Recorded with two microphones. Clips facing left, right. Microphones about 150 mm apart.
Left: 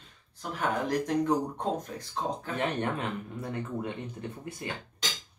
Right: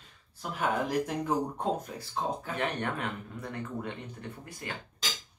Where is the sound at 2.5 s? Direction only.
25° left (ahead or behind).